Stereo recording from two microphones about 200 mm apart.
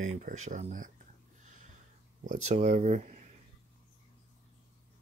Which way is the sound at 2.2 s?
40° right (ahead or behind).